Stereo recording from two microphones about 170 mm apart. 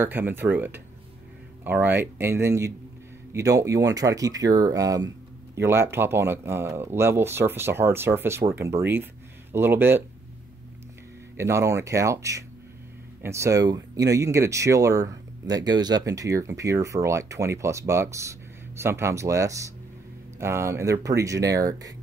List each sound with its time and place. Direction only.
0.0 s speech: 10° right (ahead or behind)
11.3 s speech: 15° right (ahead or behind)